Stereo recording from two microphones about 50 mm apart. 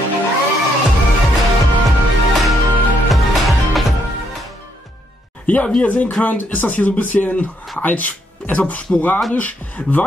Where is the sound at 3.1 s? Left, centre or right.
Centre.